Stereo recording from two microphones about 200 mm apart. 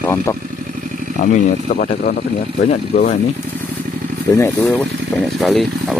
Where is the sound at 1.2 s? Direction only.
35° left (ahead or behind).